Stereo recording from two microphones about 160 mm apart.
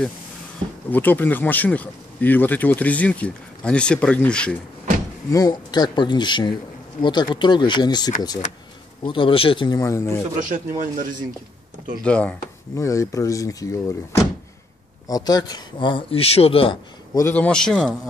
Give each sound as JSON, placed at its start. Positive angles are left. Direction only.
{"t": 0.8, "sound": "speech", "side_deg": 10}
{"t": 5.3, "sound": "a man's voice", "side_deg": 25}
{"t": 9.8, "sound": "speech", "side_deg": 15}
{"t": 10.5, "sound": "speech", "side_deg": -60}
{"t": 12.0, "sound": "speech", "side_deg": 5}
{"t": 12.7, "sound": "speech", "side_deg": 20}
{"t": 17.1, "sound": "a man's voice", "side_deg": 15}